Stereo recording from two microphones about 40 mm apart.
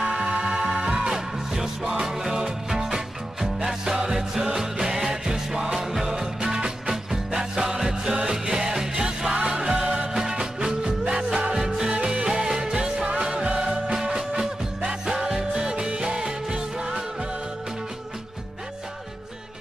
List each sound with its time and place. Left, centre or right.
0.0 s music: centre
12.0 s music: right
12.3 s music: centre